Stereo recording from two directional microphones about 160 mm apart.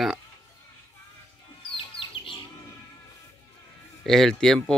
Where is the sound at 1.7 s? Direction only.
30° left (ahead or behind).